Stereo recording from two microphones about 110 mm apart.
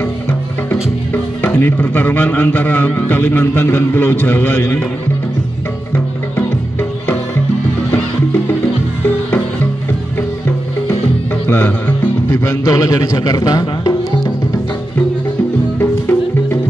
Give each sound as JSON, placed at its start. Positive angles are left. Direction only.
{"t": 1.1, "sound": "a man's voice", "side_deg": 15}
{"t": 5.9, "sound": "music", "side_deg": 20}
{"t": 11.4, "sound": "music", "side_deg": 20}
{"t": 15.8, "sound": "music", "side_deg": 20}